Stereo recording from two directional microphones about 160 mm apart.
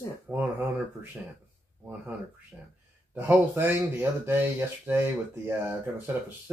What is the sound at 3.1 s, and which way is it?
Speech, 10° right (ahead or behind).